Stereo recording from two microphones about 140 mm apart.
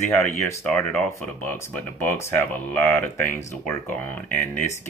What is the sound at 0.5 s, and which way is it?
Speech, 20° left (ahead or behind).